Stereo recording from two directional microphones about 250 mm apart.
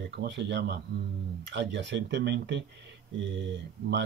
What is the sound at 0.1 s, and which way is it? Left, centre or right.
Speech, right.